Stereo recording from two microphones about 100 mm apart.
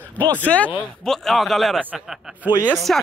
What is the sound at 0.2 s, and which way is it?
Speech, 15° left (ahead or behind).